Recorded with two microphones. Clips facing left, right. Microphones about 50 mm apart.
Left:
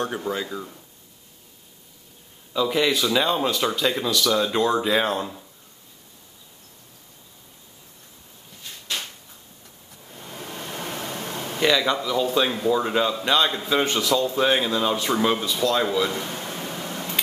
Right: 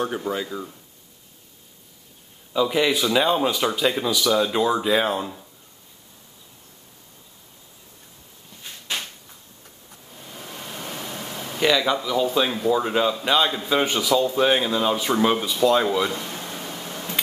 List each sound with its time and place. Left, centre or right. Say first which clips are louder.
0.0 s speech: right 1 dB; centre
2.5 s speech: right 1 dB; centre
10.3 s a sound: left 2 dB; left
11.6 s speech: right 1 dB; centre
15.4 s speech: right 3 dB; centre
16.5 s a sound: left 2 dB; centre